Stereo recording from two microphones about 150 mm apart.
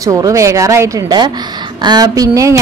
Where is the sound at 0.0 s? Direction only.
20° right (ahead or behind).